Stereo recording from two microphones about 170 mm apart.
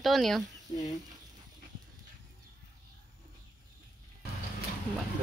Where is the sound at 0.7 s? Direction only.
35° left (ahead or behind).